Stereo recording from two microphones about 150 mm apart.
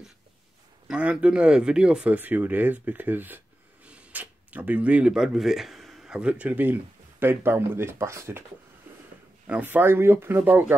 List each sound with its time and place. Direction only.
0.8 s speech: 5° right (ahead or behind)
8.9 s a sound: 15° right (ahead or behind)
9.5 s speech: 10° right (ahead or behind)